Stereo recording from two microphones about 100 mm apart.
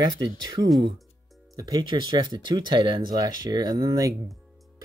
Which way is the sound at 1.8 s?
50° right (ahead or behind).